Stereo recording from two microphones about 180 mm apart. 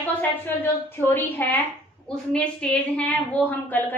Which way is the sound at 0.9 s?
10° left (ahead or behind).